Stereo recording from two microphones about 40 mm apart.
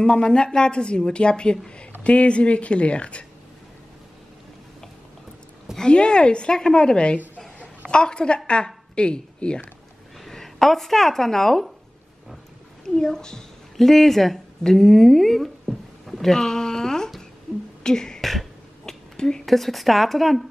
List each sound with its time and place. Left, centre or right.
0.1 s a woman's voice: left
5.8 s a woman's voice: left
10.2 s speech: centre
12.9 s a woman's voice: centre
17.8 s beatboxing: centre
18.2 s beatboxing: centre
19.1 s a woman's voice: centre
19.4 s a woman's voice: centre